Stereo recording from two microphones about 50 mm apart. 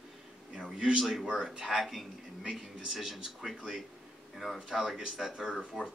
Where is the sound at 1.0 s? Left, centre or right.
Centre.